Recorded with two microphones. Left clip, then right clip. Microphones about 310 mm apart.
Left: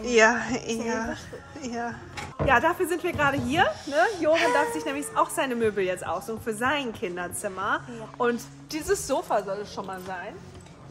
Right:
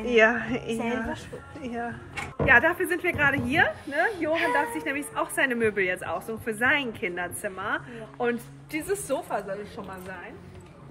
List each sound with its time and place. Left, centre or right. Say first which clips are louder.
0.0 s a woman's voice: left 1 dB; centre
4.3 s a woman's voice: left 4 dB; left
4.8 s a woman's voice: left 3 dB; centre